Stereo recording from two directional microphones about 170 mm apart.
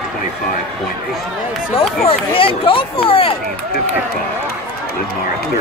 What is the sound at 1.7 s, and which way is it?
Speech, 35° left (ahead or behind).